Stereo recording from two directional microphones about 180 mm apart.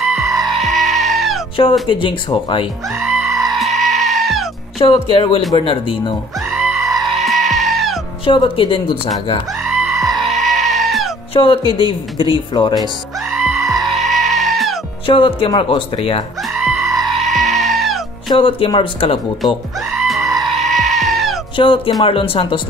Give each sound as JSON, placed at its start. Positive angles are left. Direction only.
{"t": 0.0, "sound": "music", "side_deg": 0}
{"t": 1.6, "sound": "speech", "side_deg": 30}
{"t": 3.0, "sound": "music", "side_deg": 0}
{"t": 4.8, "sound": "speech", "side_deg": 30}
{"t": 6.5, "sound": "music", "side_deg": -5}
{"t": 8.3, "sound": "speech", "side_deg": 30}
{"t": 9.7, "sound": "music", "side_deg": 0}
{"t": 11.3, "sound": "speech", "side_deg": 30}
{"t": 13.3, "sound": "music", "side_deg": 0}
{"t": 15.0, "sound": "speech", "side_deg": 30}
{"t": 16.5, "sound": "music", "side_deg": -5}
{"t": 18.3, "sound": "speech", "side_deg": 25}
{"t": 19.9, "sound": "goat", "side_deg": 0}
{"t": 21.5, "sound": "speech", "side_deg": 30}